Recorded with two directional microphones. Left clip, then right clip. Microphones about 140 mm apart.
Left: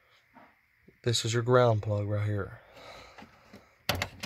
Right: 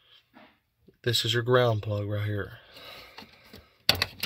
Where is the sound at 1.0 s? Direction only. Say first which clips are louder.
Right 3 dB; centre (ahead or behind).